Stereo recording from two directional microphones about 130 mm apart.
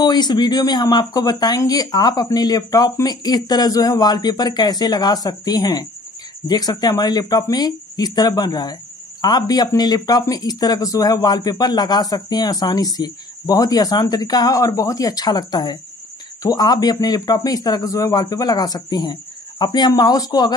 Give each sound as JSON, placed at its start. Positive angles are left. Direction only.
{"t": 0.0, "sound": "speech", "side_deg": 35}